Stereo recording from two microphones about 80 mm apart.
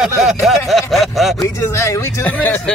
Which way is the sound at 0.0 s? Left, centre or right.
Centre.